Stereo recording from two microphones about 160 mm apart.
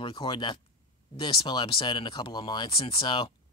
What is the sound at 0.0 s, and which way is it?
Speech, 30° left (ahead or behind).